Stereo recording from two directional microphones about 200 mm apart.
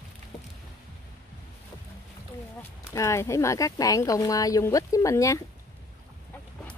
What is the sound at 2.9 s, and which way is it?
Speech, 15° left (ahead or behind).